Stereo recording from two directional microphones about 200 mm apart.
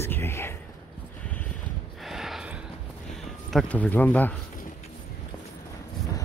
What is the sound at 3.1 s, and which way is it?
Speech, centre (ahead or behind).